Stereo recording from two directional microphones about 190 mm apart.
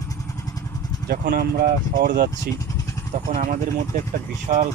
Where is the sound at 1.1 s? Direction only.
55° right (ahead or behind).